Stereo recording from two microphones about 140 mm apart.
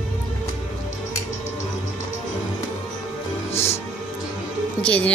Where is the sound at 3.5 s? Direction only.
50° left (ahead or behind).